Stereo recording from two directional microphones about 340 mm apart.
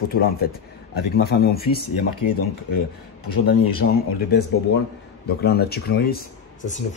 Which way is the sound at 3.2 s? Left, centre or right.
Left.